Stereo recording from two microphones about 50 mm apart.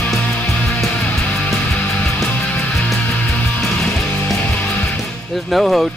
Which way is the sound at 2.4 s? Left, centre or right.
Left.